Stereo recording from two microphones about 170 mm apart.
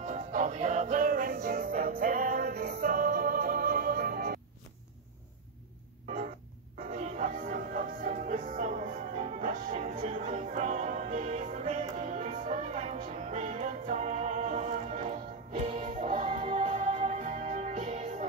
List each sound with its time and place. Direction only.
0.0 s music: 45° right (ahead or behind)
6.8 s music: 50° right (ahead or behind)